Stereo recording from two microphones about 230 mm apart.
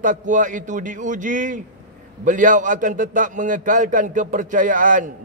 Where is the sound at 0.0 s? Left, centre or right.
Right.